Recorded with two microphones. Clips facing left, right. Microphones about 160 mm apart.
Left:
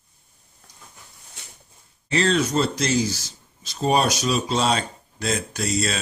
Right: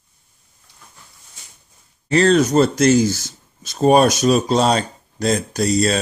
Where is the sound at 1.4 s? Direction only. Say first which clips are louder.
Left 3 dB; 70° left (ahead or behind).